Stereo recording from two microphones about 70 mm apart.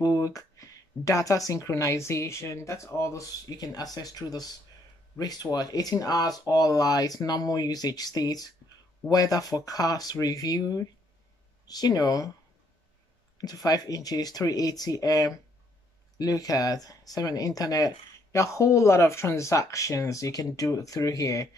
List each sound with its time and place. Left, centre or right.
0.0 s speech: left
13.4 s speech: left